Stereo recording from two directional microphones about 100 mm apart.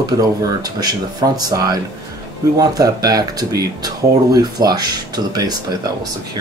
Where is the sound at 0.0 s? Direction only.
40° right (ahead or behind).